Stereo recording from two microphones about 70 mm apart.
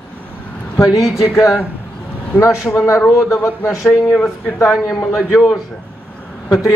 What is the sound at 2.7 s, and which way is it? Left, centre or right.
A man's voice, left.